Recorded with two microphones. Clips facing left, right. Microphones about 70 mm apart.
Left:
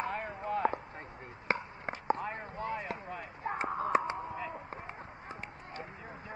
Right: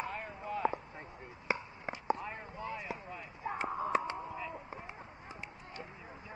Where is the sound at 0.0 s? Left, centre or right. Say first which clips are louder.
Left 4 dB; left.